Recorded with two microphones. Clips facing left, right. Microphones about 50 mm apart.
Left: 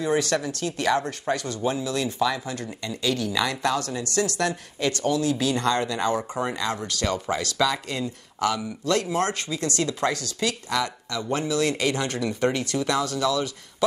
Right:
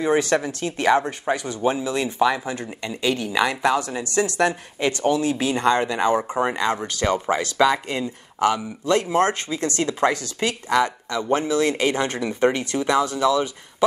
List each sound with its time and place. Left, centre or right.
0.0 s speech: right